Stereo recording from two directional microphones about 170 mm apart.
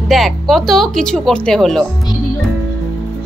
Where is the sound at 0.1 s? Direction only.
Centre (ahead or behind).